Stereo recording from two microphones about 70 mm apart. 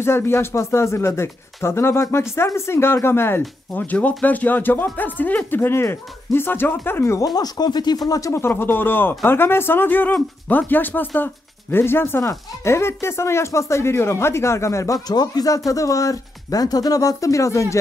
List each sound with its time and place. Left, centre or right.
0.0 s speech: left
7.3 s speech: left
8.1 s speech: left
8.4 s speech: left
15.0 s speech: left